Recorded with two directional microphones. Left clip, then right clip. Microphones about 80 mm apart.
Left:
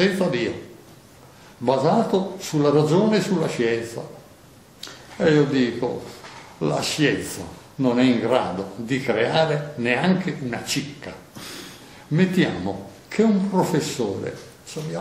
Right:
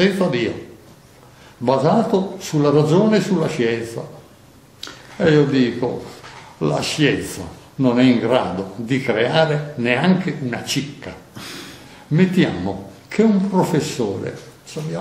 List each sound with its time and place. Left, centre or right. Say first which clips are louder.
0.0 s speech: right 3 dB; centre
1.6 s speech: right 3 dB; centre
5.1 s speech: right 3 dB; centre
11.3 s a sound: right 3 dB; right
12.1 s speech: right 3 dB; centre